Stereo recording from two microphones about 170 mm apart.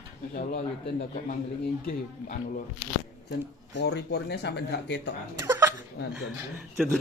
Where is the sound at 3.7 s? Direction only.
90° left.